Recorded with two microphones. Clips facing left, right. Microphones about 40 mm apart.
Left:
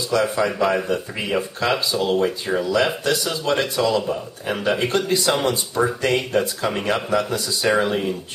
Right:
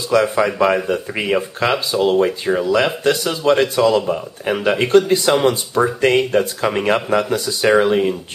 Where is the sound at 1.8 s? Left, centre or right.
Right.